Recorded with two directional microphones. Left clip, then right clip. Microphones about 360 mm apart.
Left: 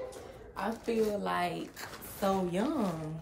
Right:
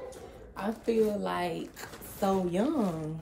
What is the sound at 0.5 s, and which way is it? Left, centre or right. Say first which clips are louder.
A woman's voice: right 3 dB; centre.